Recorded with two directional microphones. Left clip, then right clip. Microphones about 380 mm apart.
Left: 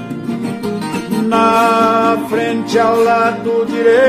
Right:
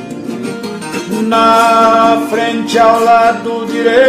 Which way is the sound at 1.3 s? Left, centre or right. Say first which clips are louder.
Right 3 dB; centre.